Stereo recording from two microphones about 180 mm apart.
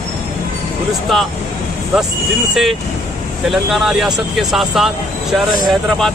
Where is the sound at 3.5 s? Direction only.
Centre (ahead or behind).